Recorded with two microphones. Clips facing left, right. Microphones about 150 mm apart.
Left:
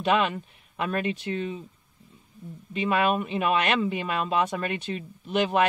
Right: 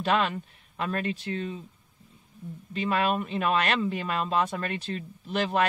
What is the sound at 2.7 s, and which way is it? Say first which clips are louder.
Speech: left 2 dB; 10° left (ahead or behind).